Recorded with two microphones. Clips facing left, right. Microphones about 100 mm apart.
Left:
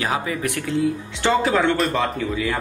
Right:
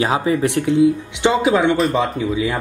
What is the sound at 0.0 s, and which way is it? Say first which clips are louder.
Speech: right 6 dB; 25° right (ahead or behind).